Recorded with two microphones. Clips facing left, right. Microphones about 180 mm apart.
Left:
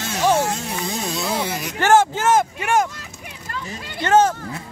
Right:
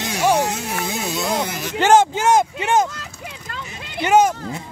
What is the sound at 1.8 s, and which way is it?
Speech, 20° right (ahead or behind).